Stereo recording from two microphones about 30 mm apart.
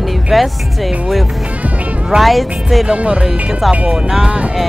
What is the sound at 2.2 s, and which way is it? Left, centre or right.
Speech, centre.